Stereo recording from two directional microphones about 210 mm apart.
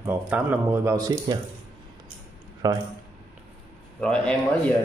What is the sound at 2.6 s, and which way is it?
Speech, 15° right (ahead or behind).